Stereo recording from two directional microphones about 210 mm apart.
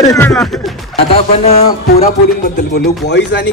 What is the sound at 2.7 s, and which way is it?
Speech, 50° left (ahead or behind).